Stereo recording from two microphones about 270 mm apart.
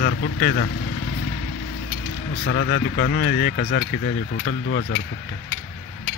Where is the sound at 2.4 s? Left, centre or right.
Left.